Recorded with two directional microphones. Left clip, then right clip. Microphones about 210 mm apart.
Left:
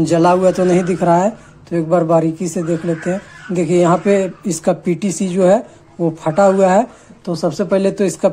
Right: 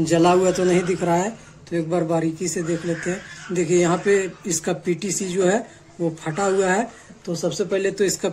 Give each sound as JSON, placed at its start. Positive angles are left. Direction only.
{"t": 0.0, "sound": "a man's voice", "side_deg": 20}